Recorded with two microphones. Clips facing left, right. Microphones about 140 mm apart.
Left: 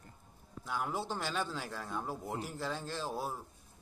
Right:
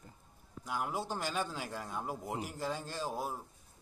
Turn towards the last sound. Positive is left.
turn(degrees=-10)  # may be behind; listen again after turning